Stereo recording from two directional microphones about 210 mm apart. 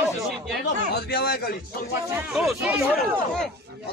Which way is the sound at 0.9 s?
45° left (ahead or behind).